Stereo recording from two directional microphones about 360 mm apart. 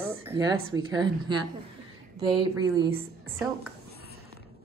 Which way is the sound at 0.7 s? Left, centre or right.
Centre.